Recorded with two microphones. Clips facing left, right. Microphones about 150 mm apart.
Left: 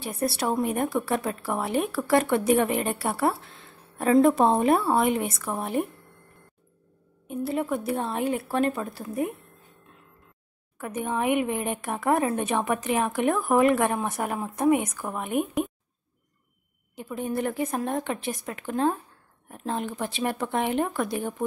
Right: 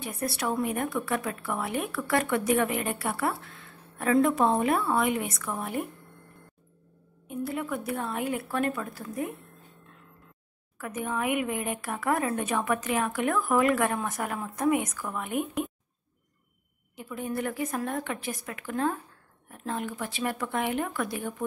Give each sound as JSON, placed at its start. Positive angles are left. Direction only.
{"t": 0.0, "sound": "speech", "side_deg": 30}
{"t": 7.2, "sound": "speech", "side_deg": 30}
{"t": 10.8, "sound": "a woman's voice", "side_deg": 25}
{"t": 16.9, "sound": "speech", "side_deg": 25}